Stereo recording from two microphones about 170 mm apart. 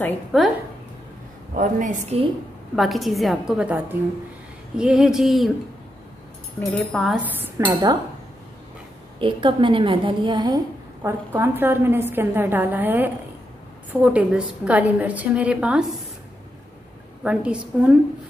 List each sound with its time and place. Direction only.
0.3 s a woman's voice: centre (ahead or behind)
1.5 s a woman's voice: 50° right (ahead or behind)
2.7 s a woman's voice: centre (ahead or behind)
6.6 s a woman's voice: centre (ahead or behind)
7.2 s a woman's voice: 10° right (ahead or behind)
7.6 s a woman's voice: 25° right (ahead or behind)
9.2 s a woman's voice: 30° right (ahead or behind)
11.0 s a woman's voice: 15° right (ahead or behind)
17.2 s a woman's voice: 5° right (ahead or behind)